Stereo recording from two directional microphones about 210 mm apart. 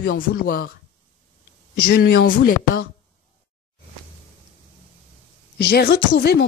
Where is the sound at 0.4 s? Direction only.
40° left (ahead or behind).